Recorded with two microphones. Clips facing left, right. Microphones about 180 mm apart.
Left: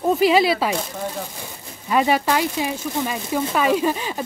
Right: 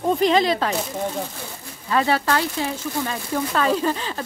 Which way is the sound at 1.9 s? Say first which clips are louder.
Left 2 dB; 15° left (ahead or behind).